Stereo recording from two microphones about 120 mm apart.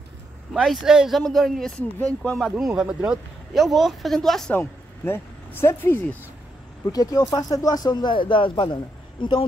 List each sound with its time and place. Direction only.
0.5 s speech: 5° right (ahead or behind)
2.0 s speech: 15° left (ahead or behind)
2.5 s speech: 5° right (ahead or behind)
4.6 s speech: 20° left (ahead or behind)
6.8 s speech: 30° left (ahead or behind)